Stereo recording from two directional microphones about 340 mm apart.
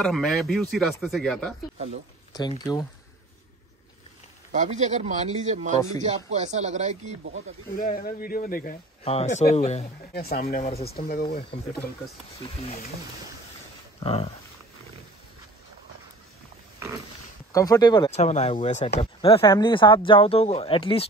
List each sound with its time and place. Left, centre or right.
0.0 s speech: centre
2.3 s speech: centre
4.5 s speech: right
7.7 s speech: left
13.9 s speech: centre
17.5 s speech: centre